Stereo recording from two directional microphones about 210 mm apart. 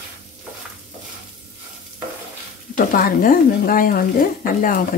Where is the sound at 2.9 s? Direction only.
40° left (ahead or behind).